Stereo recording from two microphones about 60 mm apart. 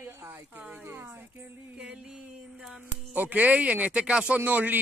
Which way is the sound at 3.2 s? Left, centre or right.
Right.